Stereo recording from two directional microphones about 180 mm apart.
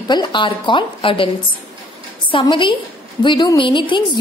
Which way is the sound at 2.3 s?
30° left (ahead or behind).